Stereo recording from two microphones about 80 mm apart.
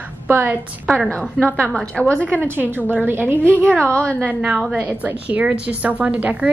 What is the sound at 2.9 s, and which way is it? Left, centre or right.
Speech, right.